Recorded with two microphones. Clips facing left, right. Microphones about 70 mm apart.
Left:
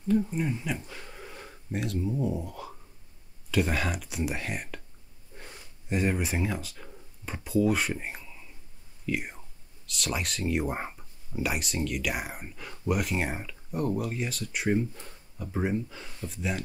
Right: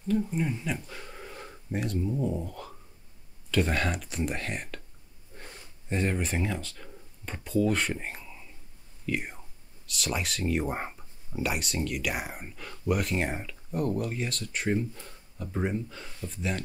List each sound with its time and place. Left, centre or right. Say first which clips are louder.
0.3 s speech: even; centre
1.2 s speech: right 1 dB; centre
5.9 s speech: left 1 dB; centre
15.3 s speech: left 1 dB; centre